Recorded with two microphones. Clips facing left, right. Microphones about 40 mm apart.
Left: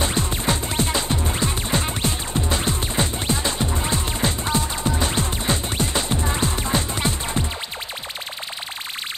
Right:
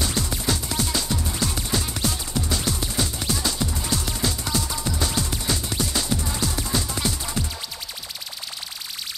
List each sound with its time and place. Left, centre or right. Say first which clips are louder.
0.0 s music: left 3 dB; left